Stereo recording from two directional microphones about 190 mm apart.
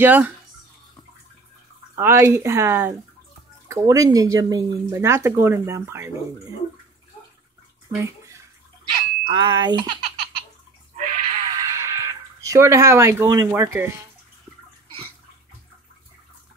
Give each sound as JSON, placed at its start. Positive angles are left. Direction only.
{"t": 0.0, "sound": "speech", "side_deg": -10}
{"t": 2.0, "sound": "speech", "side_deg": -15}
{"t": 7.9, "sound": "bathtub", "side_deg": -15}
{"t": 9.3, "sound": "a child's voice", "side_deg": -20}
{"t": 11.0, "sound": "a sound", "side_deg": -40}
{"t": 11.5, "sound": "a sound", "side_deg": -15}